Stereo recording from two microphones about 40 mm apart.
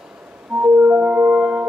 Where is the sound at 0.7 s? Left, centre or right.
Right.